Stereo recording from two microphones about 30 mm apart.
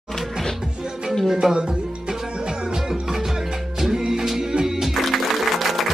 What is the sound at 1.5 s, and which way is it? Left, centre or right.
Music, right.